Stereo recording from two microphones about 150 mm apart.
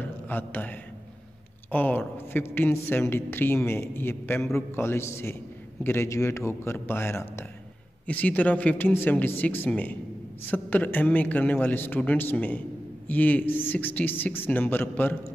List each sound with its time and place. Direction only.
0.3 s a man's voice: 15° left (ahead or behind)